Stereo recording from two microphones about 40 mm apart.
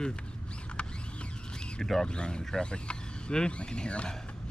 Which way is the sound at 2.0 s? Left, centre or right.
Left.